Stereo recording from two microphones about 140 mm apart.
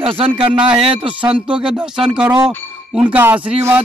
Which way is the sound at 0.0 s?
40° right (ahead or behind).